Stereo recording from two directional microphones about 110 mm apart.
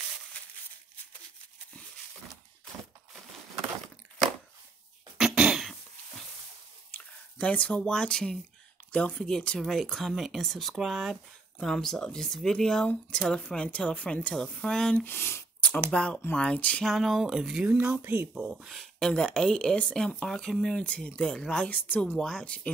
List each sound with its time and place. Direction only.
5.1 s cough: 5° right (ahead or behind)
6.9 s speech: 15° left (ahead or behind)
15.0 s speech: 20° left (ahead or behind)
16.8 s speech: centre (ahead or behind)
17.6 s speech: 15° right (ahead or behind); by 22.1 s 15° left (ahead or behind)
22.1 s speech: 5° left (ahead or behind)